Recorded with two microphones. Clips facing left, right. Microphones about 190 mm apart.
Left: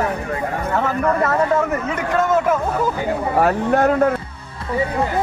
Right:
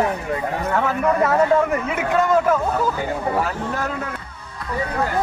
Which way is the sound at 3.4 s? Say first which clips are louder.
Left 8 dB; 60° left (ahead or behind).